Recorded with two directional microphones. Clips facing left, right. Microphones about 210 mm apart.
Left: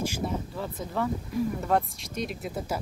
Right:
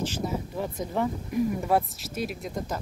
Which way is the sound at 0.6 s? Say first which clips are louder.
Right 5 dB; 15° right (ahead or behind).